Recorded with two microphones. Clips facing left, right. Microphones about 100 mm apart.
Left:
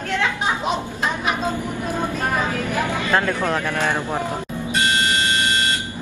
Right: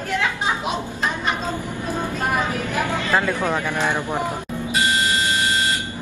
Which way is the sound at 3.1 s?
5° right (ahead or behind).